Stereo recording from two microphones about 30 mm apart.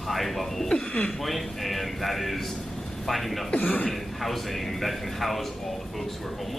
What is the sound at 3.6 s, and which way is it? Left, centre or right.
Speech, left.